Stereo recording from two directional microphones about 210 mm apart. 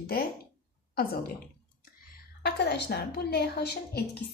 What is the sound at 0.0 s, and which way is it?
Speech, 45° left (ahead or behind).